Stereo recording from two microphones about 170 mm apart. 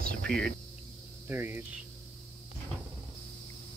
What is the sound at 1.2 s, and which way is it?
Speech, 15° right (ahead or behind).